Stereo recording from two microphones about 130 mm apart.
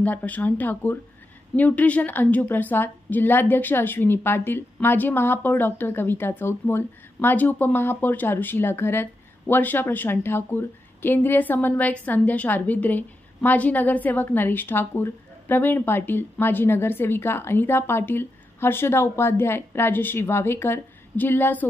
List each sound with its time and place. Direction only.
0.0 s a woman's voice: 10° left (ahead or behind)